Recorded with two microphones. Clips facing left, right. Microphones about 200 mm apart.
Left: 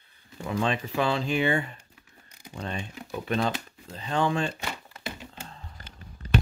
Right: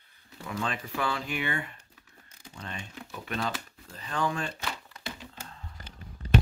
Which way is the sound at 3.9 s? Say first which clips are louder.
Left 5 dB; 25° left (ahead or behind).